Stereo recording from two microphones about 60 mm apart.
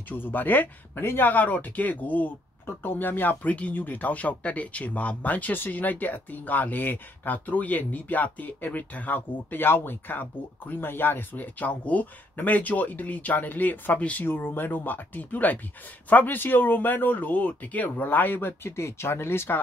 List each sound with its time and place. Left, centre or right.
0.1 s speech: left
14.2 s speech: left